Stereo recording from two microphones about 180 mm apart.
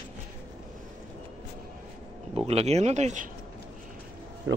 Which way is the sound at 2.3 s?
35° right (ahead or behind).